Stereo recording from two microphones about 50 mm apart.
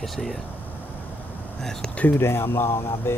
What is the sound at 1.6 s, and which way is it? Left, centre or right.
Speech, centre.